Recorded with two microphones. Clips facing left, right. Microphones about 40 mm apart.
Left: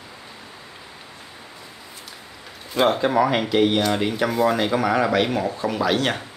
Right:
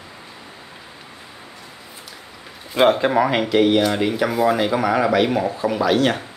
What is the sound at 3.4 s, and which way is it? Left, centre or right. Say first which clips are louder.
Speech: right 3 dB; centre.